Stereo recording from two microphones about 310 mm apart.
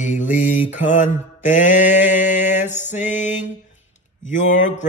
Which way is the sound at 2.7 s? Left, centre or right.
Left.